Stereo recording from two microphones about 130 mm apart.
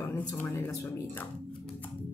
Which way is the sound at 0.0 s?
10° left (ahead or behind).